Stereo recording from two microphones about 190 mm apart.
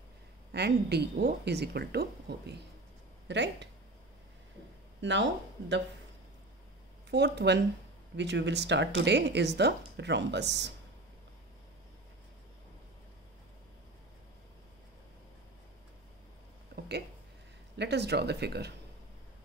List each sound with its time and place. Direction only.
0.5 s speech: 60° right (ahead or behind)
5.0 s speech: 70° right (ahead or behind)
7.1 s speech: 60° right (ahead or behind)
16.7 s a sound: 60° right (ahead or behind)
17.7 s speech: 60° right (ahead or behind)